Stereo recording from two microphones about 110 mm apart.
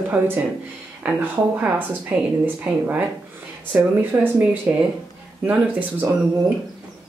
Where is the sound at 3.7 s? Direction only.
15° right (ahead or behind).